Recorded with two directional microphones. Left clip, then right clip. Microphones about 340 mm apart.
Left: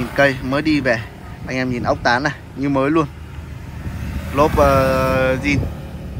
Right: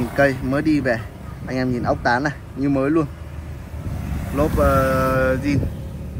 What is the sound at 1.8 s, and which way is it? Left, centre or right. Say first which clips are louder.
Speech: left 3 dB; centre.